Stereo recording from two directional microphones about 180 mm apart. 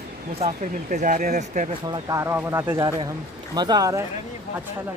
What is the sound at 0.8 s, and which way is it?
Speech, 50° right (ahead or behind).